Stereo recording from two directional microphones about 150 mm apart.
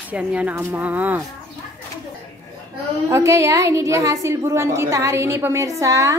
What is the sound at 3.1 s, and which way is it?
A woman's voice, 20° right (ahead or behind).